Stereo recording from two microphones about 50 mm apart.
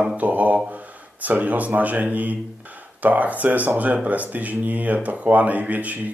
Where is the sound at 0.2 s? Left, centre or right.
Right.